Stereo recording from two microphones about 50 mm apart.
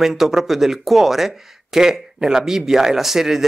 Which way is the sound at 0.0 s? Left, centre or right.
Centre.